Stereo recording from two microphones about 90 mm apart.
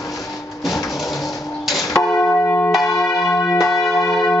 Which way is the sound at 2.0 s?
35° left (ahead or behind).